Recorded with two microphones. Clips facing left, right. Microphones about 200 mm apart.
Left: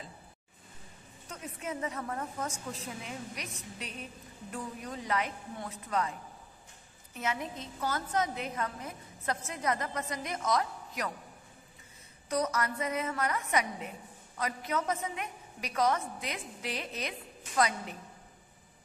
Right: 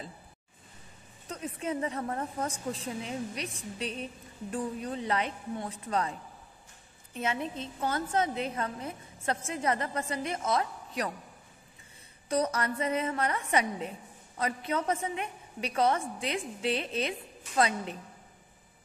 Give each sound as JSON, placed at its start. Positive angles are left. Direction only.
{"t": 1.3, "sound": "a woman's voice", "side_deg": -30}
{"t": 7.2, "sound": "a woman's voice", "side_deg": -25}
{"t": 12.3, "sound": "a woman's voice", "side_deg": -30}